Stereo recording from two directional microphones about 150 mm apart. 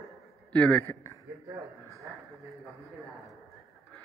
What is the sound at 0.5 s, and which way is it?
Speech, 10° left (ahead or behind).